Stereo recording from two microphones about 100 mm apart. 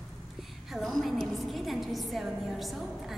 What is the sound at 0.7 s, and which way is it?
A woman's voice, centre (ahead or behind).